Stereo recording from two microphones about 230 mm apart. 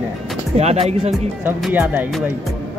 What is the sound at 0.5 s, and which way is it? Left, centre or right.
Speech, right.